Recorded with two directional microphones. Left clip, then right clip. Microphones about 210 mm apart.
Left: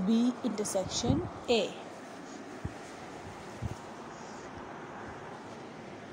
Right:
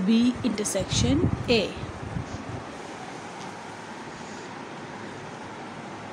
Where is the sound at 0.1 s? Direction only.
Centre (ahead or behind).